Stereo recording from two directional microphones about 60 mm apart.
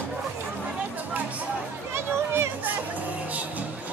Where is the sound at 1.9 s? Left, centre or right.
Right.